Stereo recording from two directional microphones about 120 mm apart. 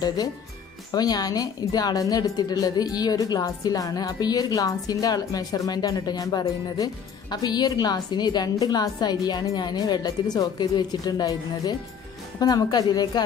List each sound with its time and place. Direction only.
0.9 s a woman's voice: 35° left (ahead or behind)